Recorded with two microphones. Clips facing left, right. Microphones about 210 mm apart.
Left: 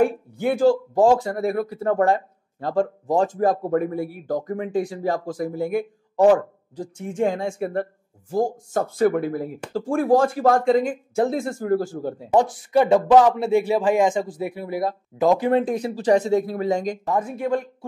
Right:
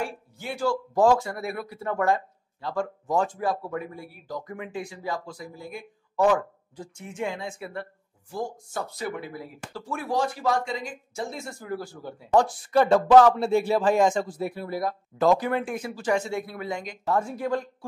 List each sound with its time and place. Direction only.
0.0 s a sound: 55° left (ahead or behind)
0.7 s speech: 30° left (ahead or behind); by 5.9 s 60° left (ahead or behind)
6.1 s speech: 35° left (ahead or behind)
12.4 s speech: 15° left (ahead or behind); by 17.0 s 40° left (ahead or behind)
17.1 s speech: 20° left (ahead or behind)